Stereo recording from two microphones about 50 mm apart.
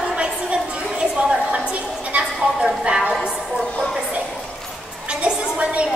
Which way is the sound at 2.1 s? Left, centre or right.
Right.